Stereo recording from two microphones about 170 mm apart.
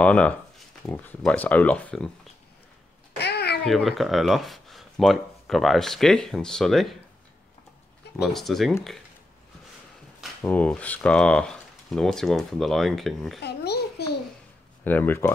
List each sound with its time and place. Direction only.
0.0 s speech: 5° left (ahead or behind)
3.2 s a sound: 75° left (ahead or behind)
3.6 s speech: centre (ahead or behind)
8.2 s speech: centre (ahead or behind)
10.4 s speech: 10° left (ahead or behind)
13.4 s babbling: 75° left (ahead or behind)
14.9 s speech: 10° left (ahead or behind)